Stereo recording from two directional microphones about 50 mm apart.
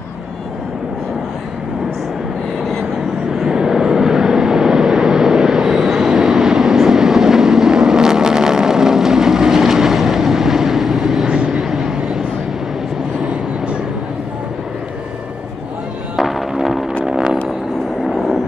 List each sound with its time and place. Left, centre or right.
3.3 s vehicle: centre
13.2 s vehicle: right
16.2 s music: centre
17.0 s vehicle: centre